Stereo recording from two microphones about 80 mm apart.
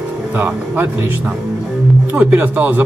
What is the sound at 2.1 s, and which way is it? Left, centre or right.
Speech, right.